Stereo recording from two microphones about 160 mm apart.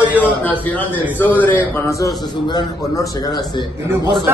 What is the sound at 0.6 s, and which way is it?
A man's voice, 10° left (ahead or behind).